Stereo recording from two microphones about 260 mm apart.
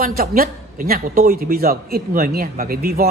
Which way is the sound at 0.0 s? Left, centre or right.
Right.